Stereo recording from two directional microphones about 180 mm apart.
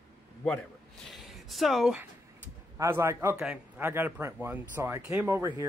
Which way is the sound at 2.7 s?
15° right (ahead or behind).